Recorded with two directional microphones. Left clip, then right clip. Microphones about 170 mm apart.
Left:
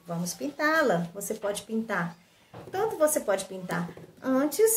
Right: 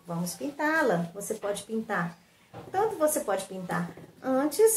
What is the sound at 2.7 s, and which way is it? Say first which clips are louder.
Speech: even; 15° left (ahead or behind).